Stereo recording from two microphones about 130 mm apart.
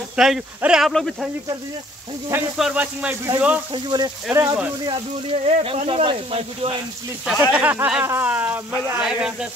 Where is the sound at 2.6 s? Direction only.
10° right (ahead or behind).